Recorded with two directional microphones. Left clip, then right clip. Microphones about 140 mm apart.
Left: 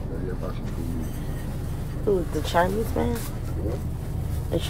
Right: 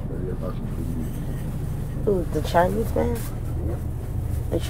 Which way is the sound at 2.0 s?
5° left (ahead or behind).